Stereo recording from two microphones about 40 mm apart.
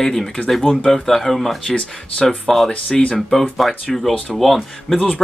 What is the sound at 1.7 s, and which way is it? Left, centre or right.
Speech, left.